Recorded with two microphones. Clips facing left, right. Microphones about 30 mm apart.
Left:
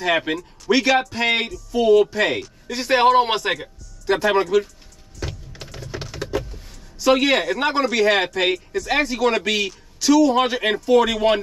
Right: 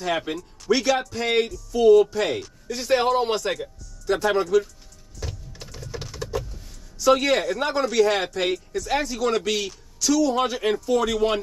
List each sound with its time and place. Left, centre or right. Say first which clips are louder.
0.0 s speech: left 5 dB; left
5.2 s a sound: left 5 dB; left
6.1 s power windows: left 4 dB; left
6.5 s speech: left 3 dB; left